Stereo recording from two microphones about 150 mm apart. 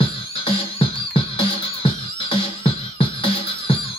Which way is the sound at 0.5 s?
40° left (ahead or behind).